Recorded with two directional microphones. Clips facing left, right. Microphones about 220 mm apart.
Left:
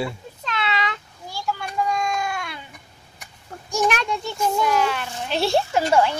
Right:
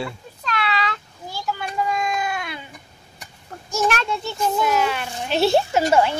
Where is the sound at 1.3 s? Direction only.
5° right (ahead or behind).